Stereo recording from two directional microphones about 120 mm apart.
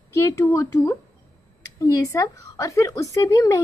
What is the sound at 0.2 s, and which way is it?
Speech, 25° left (ahead or behind).